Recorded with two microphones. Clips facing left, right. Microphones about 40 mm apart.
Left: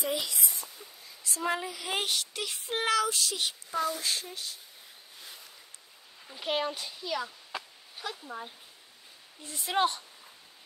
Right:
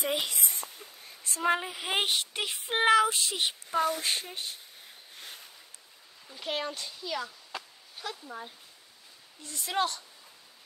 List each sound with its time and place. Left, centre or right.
0.0 s a sound: right
1.4 s speech: right
6.2 s a child's voice: centre
9.4 s speech: centre